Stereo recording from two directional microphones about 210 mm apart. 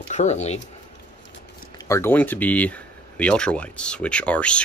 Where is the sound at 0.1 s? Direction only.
35° left (ahead or behind).